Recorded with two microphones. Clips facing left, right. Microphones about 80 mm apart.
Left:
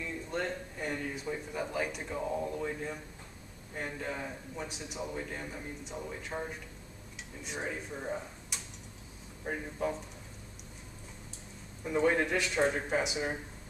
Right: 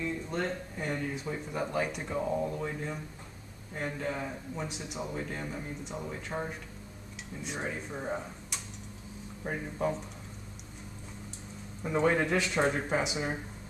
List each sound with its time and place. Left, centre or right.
0.0 s speech: centre
7.4 s speech: centre
7.9 s speech: centre
9.4 s speech: centre
11.8 s speech: centre